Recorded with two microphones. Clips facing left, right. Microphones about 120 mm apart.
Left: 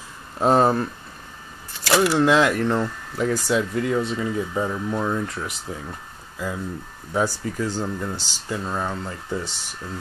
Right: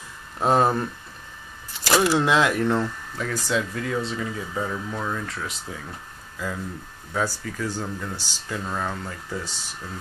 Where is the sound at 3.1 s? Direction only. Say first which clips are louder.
Left 10 dB; 20° left (ahead or behind).